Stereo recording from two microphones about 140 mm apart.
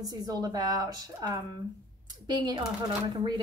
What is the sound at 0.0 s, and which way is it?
A woman's voice, 25° right (ahead or behind).